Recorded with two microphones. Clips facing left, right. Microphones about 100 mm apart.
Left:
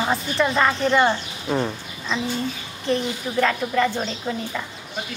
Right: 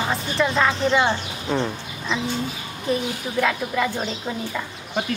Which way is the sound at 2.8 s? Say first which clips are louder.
Left 1 dB; 5° right (ahead or behind).